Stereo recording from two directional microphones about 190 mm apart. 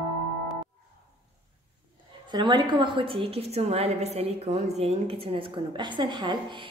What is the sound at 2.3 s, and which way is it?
A woman's voice, 25° right (ahead or behind).